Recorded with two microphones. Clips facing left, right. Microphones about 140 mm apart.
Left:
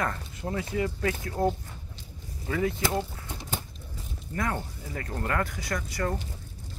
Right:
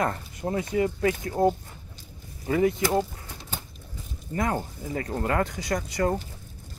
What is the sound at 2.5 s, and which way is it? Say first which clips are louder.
Speech: right 6 dB; 20° right (ahead or behind).